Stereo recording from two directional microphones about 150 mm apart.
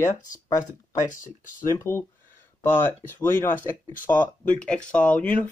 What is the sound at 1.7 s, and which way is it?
Speech, 15° left (ahead or behind).